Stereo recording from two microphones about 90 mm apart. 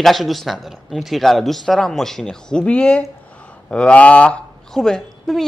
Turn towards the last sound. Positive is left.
turn(degrees=5)  # may be behind; listen again after turning